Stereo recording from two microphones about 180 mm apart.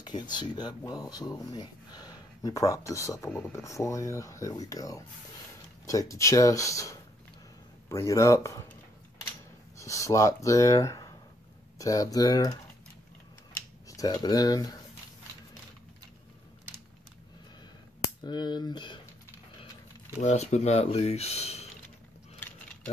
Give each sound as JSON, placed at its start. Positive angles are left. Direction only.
{"t": 0.0, "sound": "speech", "side_deg": 25}
{"t": 3.3, "sound": "speech", "side_deg": 5}
{"t": 3.5, "sound": "speech", "side_deg": 15}
{"t": 9.8, "sound": "speech", "side_deg": 15}
{"t": 13.8, "sound": "speech", "side_deg": 20}
{"t": 18.2, "sound": "speech", "side_deg": 25}
{"t": 20.2, "sound": "speech", "side_deg": 40}